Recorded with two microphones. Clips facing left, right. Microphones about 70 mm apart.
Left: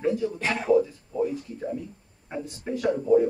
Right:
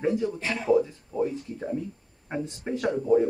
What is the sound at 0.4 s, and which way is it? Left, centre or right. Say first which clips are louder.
Speech: left 3 dB; left.